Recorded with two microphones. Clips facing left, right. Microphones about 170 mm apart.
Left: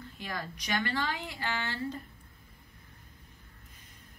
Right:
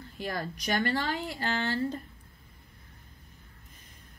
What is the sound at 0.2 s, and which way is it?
Speech, 40° right (ahead or behind).